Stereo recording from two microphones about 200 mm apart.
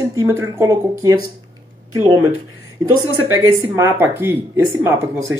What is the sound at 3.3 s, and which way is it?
Speech, 15° right (ahead or behind).